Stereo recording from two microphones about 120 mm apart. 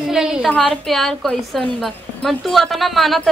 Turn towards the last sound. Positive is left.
turn(degrees=0)  # may be behind; listen again after turning